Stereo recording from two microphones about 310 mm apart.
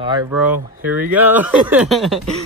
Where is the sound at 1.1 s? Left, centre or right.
Centre.